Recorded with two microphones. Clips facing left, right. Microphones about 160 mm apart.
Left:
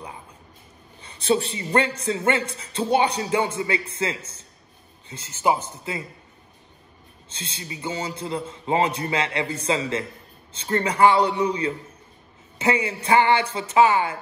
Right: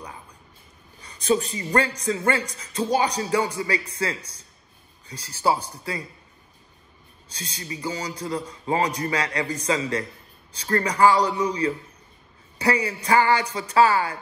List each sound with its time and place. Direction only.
1.0 s a man's voice: 30° left (ahead or behind)
4.2 s speech: 35° right (ahead or behind)
5.0 s a man's voice: 25° left (ahead or behind)
7.2 s a man's voice: 25° left (ahead or behind)
12.5 s a man's voice: 25° left (ahead or behind)